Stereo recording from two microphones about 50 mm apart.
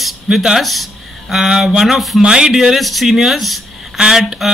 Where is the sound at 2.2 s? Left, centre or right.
Centre.